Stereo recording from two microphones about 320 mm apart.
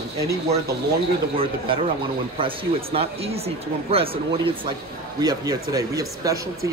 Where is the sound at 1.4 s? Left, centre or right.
Centre.